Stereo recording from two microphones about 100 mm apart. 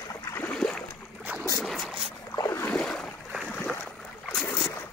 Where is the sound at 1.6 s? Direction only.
Centre (ahead or behind).